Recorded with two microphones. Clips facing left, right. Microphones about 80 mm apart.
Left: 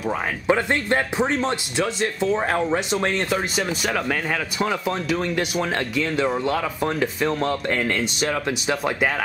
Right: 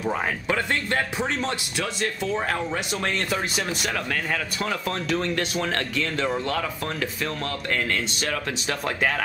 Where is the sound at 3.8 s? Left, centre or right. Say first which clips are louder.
Left 4 dB; centre.